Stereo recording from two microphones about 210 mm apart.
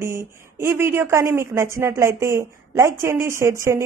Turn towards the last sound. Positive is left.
turn(degrees=-15)  # may be behind; listen again after turning